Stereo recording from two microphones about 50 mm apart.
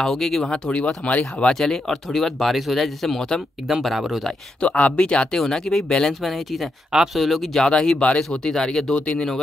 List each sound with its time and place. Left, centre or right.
0.0 s speech: centre
0.5 s speech: left
1.5 s speech: centre
4.6 s speech: left
5.4 s speech: centre
6.2 s speech: centre
8.9 s speech: left